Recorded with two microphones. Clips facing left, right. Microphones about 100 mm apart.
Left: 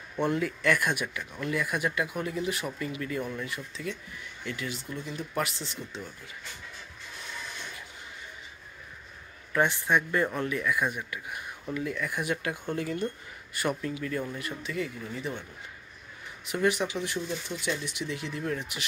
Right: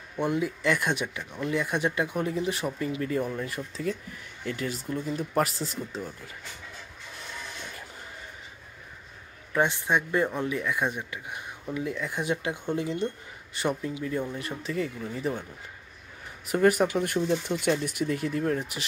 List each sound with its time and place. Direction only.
0.2 s speech: 15° right (ahead or behind); by 6.3 s 40° right (ahead or behind)
9.5 s speech: 20° right (ahead or behind); by 15.4 s 35° right (ahead or behind)
16.4 s speech: 45° right (ahead or behind)